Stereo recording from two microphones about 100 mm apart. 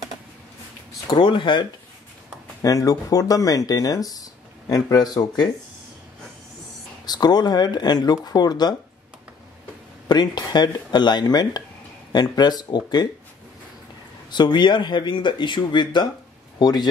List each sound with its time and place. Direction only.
1.0 s speech: 55° left (ahead or behind)
2.6 s speech: 35° left (ahead or behind)
7.1 s speech: 45° left (ahead or behind)
10.0 s speech: 45° left (ahead or behind)
14.3 s speech: 50° left (ahead or behind)